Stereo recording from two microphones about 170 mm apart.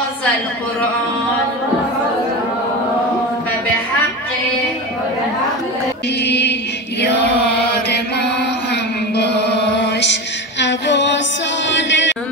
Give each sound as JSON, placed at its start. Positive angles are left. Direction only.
{"t": 6.2, "sound": "music", "side_deg": 90}
{"t": 9.1, "sound": "music", "side_deg": 80}
{"t": 10.6, "sound": "a sound", "side_deg": 90}
{"t": 11.7, "sound": "chant", "side_deg": 90}